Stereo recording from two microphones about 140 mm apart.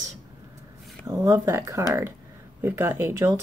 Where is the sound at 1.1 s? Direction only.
20° right (ahead or behind).